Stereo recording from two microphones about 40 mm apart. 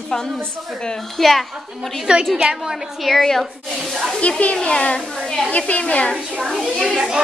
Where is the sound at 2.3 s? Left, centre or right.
Centre.